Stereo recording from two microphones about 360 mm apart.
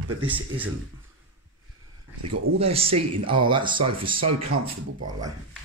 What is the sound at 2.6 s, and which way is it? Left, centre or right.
Speech, centre.